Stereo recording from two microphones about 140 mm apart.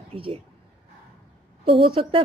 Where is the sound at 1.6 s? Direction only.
40° right (ahead or behind).